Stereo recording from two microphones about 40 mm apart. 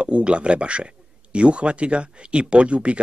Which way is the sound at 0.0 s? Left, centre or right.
Right.